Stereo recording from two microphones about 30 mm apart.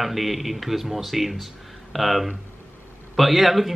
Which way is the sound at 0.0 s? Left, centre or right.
Centre.